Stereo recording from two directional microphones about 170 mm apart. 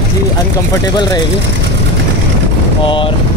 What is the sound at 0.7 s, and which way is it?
Speech, 20° left (ahead or behind).